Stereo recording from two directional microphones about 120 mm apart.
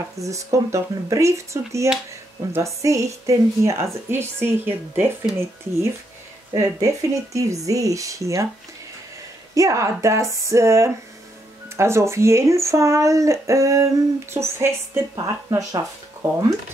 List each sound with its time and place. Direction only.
0.2 s speech: 25° right (ahead or behind)
6.5 s speech: 25° right (ahead or behind)
9.5 s speech: 25° right (ahead or behind)